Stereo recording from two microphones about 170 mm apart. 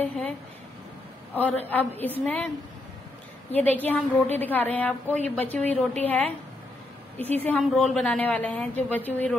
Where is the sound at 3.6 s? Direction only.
10° left (ahead or behind).